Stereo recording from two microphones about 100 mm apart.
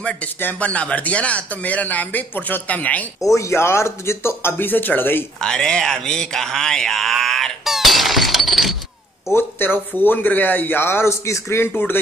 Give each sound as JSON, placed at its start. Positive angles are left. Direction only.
{"t": 0.0, "sound": "speech", "side_deg": 10}
{"t": 3.3, "sound": "speech", "side_deg": 25}
{"t": 5.4, "sound": "a sound", "side_deg": 5}
{"t": 9.3, "sound": "speech", "side_deg": 20}